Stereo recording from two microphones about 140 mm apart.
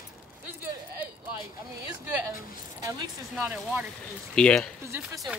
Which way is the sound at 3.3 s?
10° right (ahead or behind).